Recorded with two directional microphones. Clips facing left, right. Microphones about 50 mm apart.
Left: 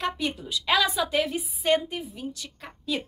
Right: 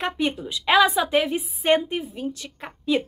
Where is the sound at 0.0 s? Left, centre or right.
Right.